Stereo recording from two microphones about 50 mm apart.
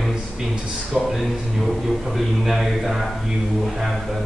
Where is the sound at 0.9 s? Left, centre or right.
Centre.